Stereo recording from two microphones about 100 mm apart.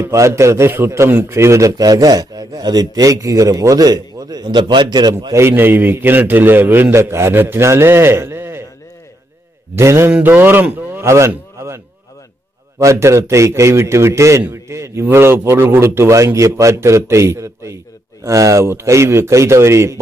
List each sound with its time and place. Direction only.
0.0 s a man's voice: 25° right (ahead or behind); by 4.8 s 50° right (ahead or behind)
5.3 s a man's voice: 25° right (ahead or behind)
9.8 s a man's voice: 30° right (ahead or behind)
11.1 s a man's voice: 30° right (ahead or behind)